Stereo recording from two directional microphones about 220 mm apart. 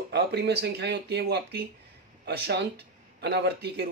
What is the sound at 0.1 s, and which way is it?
A man's voice, 50° right (ahead or behind).